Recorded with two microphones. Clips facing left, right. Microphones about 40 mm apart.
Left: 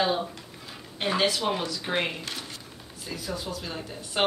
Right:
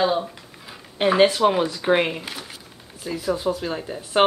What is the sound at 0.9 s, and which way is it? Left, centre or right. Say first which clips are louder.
Speech: right 9 dB; right.